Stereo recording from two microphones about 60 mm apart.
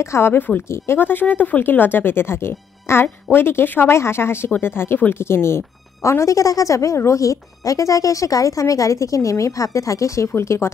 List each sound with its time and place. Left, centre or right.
0.0 s speech: left
0.7 s speech: left
0.9 s speech: left
3.9 s speech: left
6.0 s a woman's voice: left